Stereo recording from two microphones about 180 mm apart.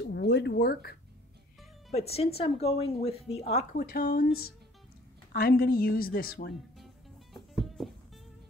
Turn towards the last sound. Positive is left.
turn(degrees=0)  # may be behind; listen again after turning